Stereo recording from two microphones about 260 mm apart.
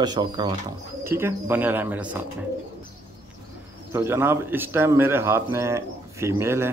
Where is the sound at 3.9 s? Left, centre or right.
Centre.